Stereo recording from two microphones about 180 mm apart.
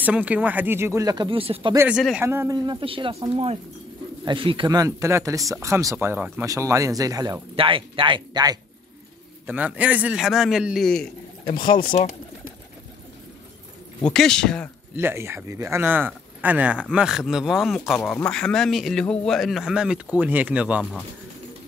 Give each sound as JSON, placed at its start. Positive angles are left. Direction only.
{"t": 0.0, "sound": "speech", "side_deg": -10}
{"t": 1.8, "sound": "speech", "side_deg": -5}
{"t": 2.2, "sound": "speech", "side_deg": -15}
{"t": 4.2, "sound": "speech", "side_deg": -25}
{"t": 9.5, "sound": "speech", "side_deg": -10}
{"t": 11.5, "sound": "speech", "side_deg": 25}
{"t": 14.0, "sound": "speech", "side_deg": 5}
{"t": 15.0, "sound": "speech", "side_deg": -10}